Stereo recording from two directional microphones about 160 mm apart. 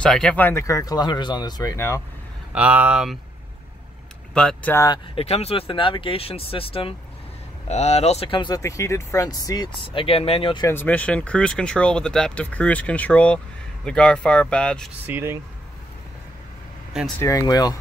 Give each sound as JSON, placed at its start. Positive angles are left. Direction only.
{"t": 0.0, "sound": "speech", "side_deg": 5}
{"t": 2.5, "sound": "speech", "side_deg": -10}
{"t": 4.3, "sound": "speech", "side_deg": 5}
{"t": 5.1, "sound": "speech", "side_deg": 40}
{"t": 10.7, "sound": "speech", "side_deg": 10}
{"t": 15.0, "sound": "speech", "side_deg": -15}
{"t": 17.2, "sound": "speech", "side_deg": 20}